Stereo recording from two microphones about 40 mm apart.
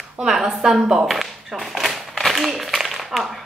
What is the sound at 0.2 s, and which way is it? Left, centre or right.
Speech, centre.